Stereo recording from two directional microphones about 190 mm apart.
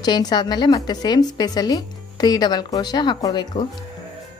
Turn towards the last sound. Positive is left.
turn(degrees=20)  # may be behind; listen again after turning